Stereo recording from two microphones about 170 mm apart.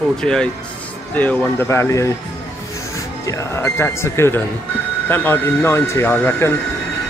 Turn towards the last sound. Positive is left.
turn(degrees=10)  # may be behind; listen again after turning